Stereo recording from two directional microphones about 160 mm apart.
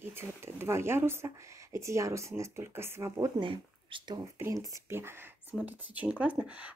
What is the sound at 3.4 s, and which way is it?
Speech, 30° right (ahead or behind).